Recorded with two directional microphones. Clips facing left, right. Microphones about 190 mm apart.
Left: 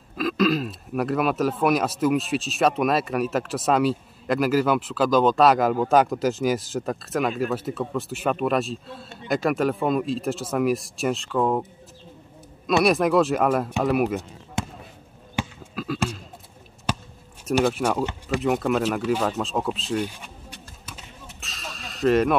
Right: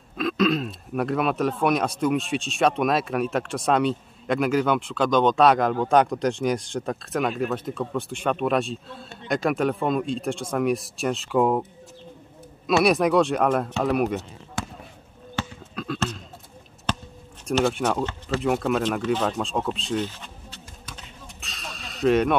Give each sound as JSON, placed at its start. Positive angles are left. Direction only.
{"t": 0.1, "sound": "speech", "side_deg": 0}
{"t": 11.2, "sound": "speech", "side_deg": -10}
{"t": 12.8, "sound": "speech", "side_deg": 0}
{"t": 14.6, "sound": "basketball bounce", "side_deg": 20}
{"t": 15.7, "sound": "a sound", "side_deg": 5}
{"t": 17.5, "sound": "speech", "side_deg": 0}
{"t": 18.4, "sound": "a sound", "side_deg": 0}